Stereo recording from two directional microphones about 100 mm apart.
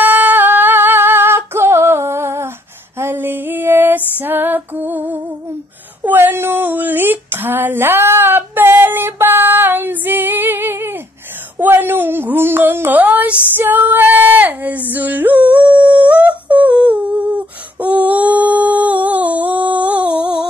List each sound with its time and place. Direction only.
0.0 s singing: 20° right (ahead or behind)
3.0 s female singing: 20° right (ahead or behind)
6.0 s a sound: 20° right (ahead or behind)